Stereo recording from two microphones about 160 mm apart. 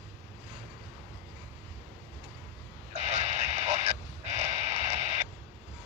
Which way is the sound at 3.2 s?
45° right (ahead or behind).